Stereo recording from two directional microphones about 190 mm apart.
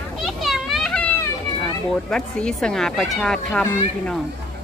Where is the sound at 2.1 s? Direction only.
5° left (ahead or behind).